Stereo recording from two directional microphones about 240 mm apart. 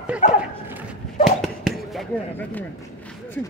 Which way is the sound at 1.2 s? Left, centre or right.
Centre.